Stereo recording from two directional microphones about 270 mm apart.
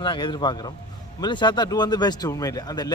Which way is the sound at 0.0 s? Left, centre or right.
Centre.